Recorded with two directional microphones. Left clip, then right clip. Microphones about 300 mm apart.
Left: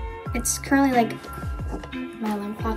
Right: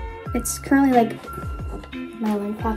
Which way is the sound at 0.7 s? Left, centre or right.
Centre.